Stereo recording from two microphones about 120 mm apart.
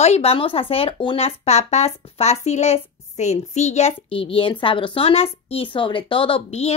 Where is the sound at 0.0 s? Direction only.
60° left (ahead or behind).